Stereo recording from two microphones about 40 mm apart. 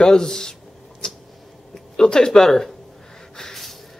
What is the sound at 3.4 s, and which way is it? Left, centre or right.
Snort, centre.